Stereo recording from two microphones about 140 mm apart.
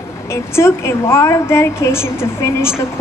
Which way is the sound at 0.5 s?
20° left (ahead or behind).